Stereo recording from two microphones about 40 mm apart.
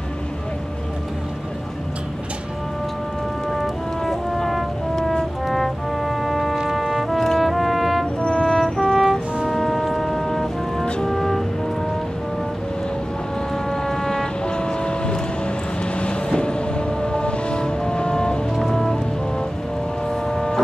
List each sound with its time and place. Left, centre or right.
4.0 s music: centre
5.5 s brass instrument: centre
6.7 s music: centre
7.2 s brass instrument: centre
8.2 s music: left
8.5 s brass instrument: centre
9.5 s music: centre
13.7 s vehicle: centre
16.3 s music: left
18.6 s music: centre
20.1 s a sound: centre